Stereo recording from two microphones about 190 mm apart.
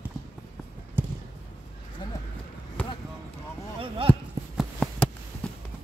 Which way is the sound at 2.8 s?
5° left (ahead or behind).